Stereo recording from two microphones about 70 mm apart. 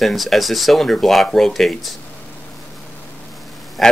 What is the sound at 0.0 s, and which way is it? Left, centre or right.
Speech, centre.